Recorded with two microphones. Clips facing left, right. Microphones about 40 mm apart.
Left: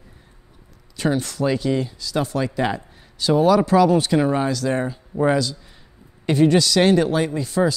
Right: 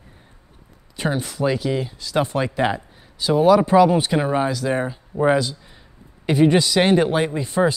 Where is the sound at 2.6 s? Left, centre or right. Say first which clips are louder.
Right 1 dB; centre.